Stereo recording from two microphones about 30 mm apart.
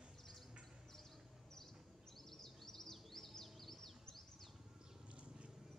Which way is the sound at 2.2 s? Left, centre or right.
Centre.